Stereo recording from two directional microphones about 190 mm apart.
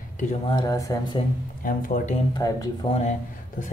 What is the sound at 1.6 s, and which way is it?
Speech, 45° left (ahead or behind).